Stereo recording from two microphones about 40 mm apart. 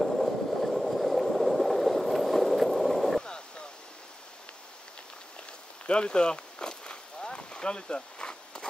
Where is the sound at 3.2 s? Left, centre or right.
Left.